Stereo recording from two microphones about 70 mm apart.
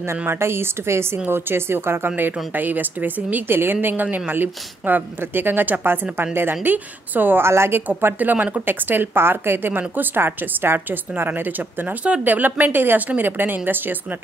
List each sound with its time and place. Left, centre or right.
0.3 s a woman's voice: right
8.0 s a woman's voice: right